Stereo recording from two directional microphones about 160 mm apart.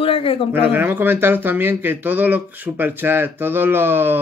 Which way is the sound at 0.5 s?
10° right (ahead or behind).